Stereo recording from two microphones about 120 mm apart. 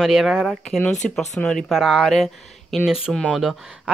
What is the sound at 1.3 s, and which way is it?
Speech, 5° left (ahead or behind).